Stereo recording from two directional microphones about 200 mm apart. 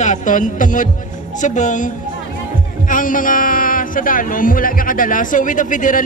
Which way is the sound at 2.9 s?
45° left (ahead or behind).